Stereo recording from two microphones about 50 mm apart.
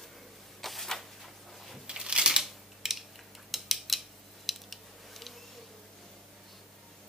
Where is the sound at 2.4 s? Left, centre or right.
Centre.